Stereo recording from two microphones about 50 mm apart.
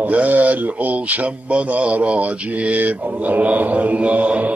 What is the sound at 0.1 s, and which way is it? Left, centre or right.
Speech, right.